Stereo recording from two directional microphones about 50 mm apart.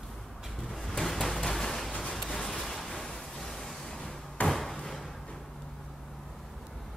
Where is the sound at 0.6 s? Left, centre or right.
Centre.